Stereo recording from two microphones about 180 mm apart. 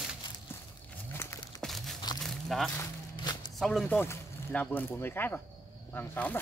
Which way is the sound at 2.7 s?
25° left (ahead or behind).